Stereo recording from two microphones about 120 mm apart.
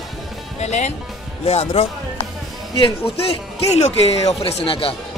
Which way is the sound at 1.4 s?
55° left (ahead or behind).